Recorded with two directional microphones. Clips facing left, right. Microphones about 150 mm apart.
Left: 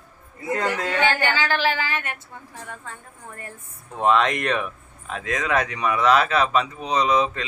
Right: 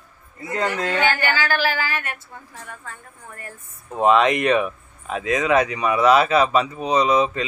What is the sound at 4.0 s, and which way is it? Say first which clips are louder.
Speech: right 3 dB; 5° right (ahead or behind).